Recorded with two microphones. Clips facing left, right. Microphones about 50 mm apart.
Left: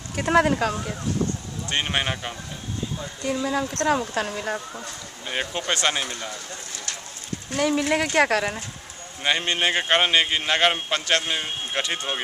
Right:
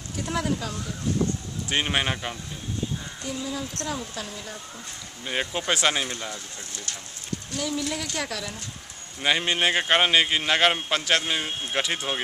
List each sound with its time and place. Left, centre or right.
0.1 s speech: left
1.7 s a man's voice: centre
3.3 s speech: left
5.2 s a man's voice: centre
7.5 s speech: left
9.2 s a man's voice: centre